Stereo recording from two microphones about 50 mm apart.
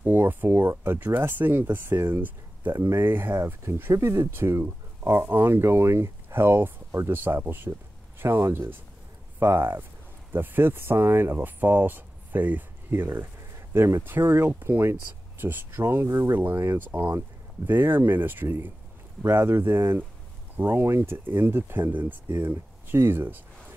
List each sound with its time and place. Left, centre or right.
0.0 s speech: right
3.9 s speech: right
16.7 s speech: right